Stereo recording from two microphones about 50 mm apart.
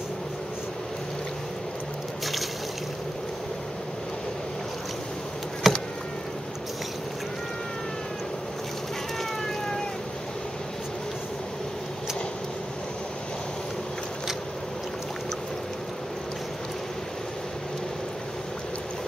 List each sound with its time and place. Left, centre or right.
5.6 s insect: centre